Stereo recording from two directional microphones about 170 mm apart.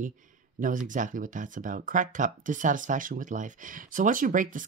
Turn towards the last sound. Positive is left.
turn(degrees=-50)  # may be behind; listen again after turning